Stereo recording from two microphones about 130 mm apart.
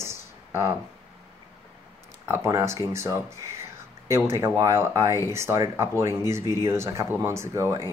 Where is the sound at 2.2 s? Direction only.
20° right (ahead or behind).